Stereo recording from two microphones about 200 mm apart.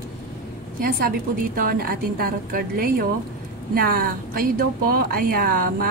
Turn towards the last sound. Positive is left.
turn(degrees=-45)  # may be behind; listen again after turning